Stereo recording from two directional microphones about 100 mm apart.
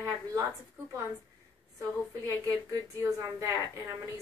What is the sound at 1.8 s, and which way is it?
A woman's voice, 35° right (ahead or behind).